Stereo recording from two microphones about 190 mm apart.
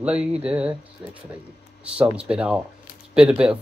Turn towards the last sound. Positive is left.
turn(degrees=-5)  # may be behind; listen again after turning